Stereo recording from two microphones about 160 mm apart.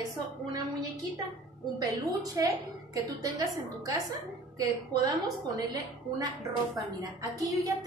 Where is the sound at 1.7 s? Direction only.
20° right (ahead or behind).